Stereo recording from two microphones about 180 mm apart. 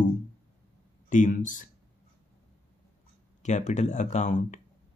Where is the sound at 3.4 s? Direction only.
40° left (ahead or behind).